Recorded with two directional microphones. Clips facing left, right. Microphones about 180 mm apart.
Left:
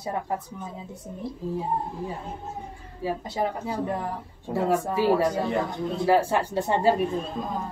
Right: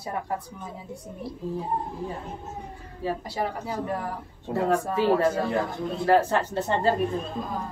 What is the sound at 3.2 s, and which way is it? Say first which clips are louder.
Speech: left 2 dB; 20° left (ahead or behind).